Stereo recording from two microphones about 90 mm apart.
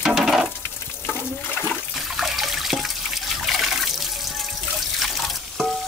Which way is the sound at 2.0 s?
Centre (ahead or behind).